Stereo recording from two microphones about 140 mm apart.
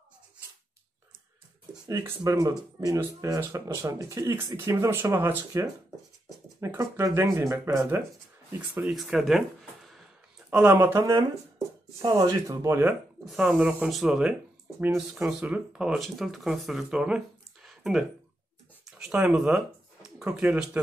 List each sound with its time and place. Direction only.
1.9 s speech: 25° right (ahead or behind)
8.5 s speech: 5° right (ahead or behind)
10.5 s speech: 15° right (ahead or behind)
13.2 s speech: centre (ahead or behind)
17.6 s a sound: centre (ahead or behind)
18.9 s speech: 5° right (ahead or behind)